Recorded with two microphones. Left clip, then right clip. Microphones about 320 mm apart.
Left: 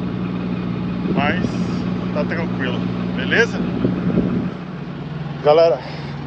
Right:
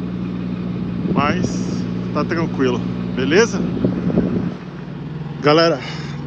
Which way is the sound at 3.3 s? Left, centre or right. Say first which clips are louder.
Right 2 dB; right.